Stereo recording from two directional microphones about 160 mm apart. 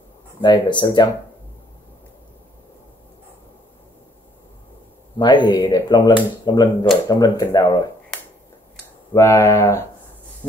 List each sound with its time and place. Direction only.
0.4 s speech: 30° left (ahead or behind)
5.2 s speech: 30° left (ahead or behind)
9.1 s speech: 15° left (ahead or behind)